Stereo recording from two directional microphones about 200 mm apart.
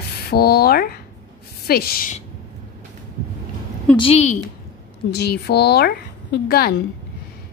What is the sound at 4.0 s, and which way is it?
Speech, 30° left (ahead or behind).